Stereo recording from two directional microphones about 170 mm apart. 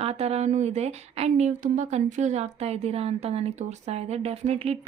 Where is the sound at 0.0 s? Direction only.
40° right (ahead or behind).